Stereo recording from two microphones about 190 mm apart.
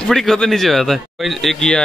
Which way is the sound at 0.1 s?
Centre (ahead or behind).